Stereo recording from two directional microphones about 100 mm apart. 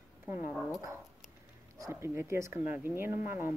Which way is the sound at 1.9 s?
25° right (ahead or behind).